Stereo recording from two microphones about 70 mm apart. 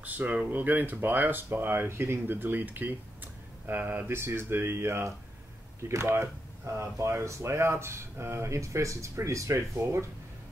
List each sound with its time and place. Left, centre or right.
0.0 s speech: right
4.2 s speech: right